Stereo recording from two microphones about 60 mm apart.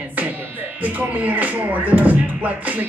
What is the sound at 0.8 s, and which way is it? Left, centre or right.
Speech, right.